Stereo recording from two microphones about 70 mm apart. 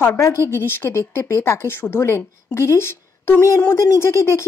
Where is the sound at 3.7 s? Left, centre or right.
Left.